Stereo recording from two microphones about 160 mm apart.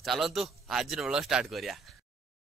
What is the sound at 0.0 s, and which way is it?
Speech, centre (ahead or behind).